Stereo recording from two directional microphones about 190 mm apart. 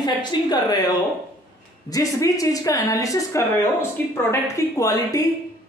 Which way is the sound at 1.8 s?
20° left (ahead or behind).